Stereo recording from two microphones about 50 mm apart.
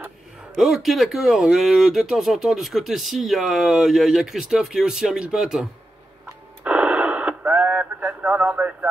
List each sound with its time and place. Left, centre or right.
0.6 s speech: centre
6.6 s radio: right